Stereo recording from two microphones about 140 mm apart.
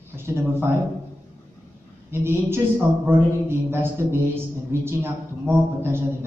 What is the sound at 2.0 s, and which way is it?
Speech, 15° right (ahead or behind).